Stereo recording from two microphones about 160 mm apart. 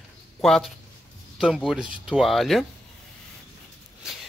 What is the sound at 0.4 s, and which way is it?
Speech, centre (ahead or behind).